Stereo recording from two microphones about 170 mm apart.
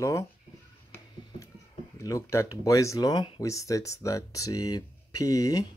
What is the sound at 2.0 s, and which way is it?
Speech, 20° left (ahead or behind).